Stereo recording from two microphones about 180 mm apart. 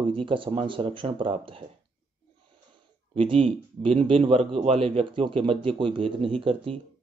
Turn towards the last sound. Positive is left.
turn(degrees=-30)  # may be behind; listen again after turning